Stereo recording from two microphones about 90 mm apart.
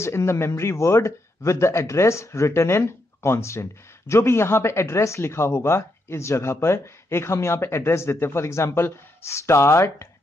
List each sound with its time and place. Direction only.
0.0 s speech: 30° left (ahead or behind)